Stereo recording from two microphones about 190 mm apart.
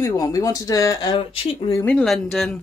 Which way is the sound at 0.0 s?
20° left (ahead or behind).